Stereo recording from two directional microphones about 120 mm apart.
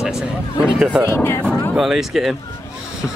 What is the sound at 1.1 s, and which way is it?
Speech, 20° left (ahead or behind).